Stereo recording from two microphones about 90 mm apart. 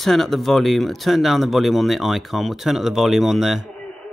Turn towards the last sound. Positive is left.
turn(degrees=0)  # may be behind; listen again after turning